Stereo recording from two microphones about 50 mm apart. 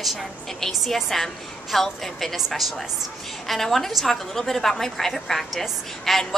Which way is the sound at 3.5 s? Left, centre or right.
Centre.